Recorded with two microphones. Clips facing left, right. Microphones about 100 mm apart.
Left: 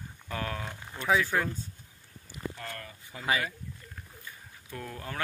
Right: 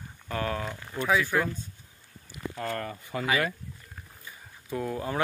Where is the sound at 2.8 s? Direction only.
65° right (ahead or behind).